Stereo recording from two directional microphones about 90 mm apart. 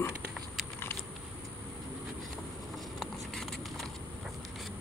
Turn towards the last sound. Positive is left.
turn(degrees=5)  # may be behind; listen again after turning